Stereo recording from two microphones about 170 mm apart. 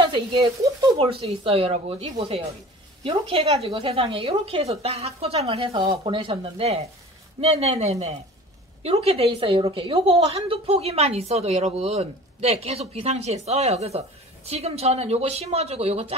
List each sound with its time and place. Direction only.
0.1 s speech: 30° right (ahead or behind)
1.2 s a woman's voice: 35° right (ahead or behind)